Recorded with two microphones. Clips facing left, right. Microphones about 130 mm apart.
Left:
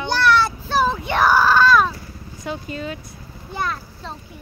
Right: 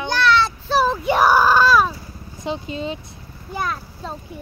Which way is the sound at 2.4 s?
25° right (ahead or behind).